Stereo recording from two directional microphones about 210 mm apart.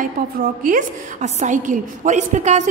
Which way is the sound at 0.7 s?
35° right (ahead or behind).